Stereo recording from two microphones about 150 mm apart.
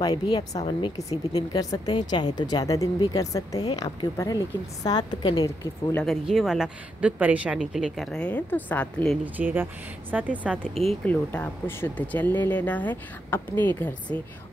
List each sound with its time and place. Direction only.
0.0 s speech: 30° left (ahead or behind)
5.9 s speech: centre (ahead or behind)
9.2 s speech: 10° right (ahead or behind)
10.7 s speech: 40° right (ahead or behind)
11.1 s speech: 10° left (ahead or behind)